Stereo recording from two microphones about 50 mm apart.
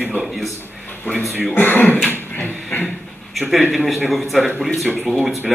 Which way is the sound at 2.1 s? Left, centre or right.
Left.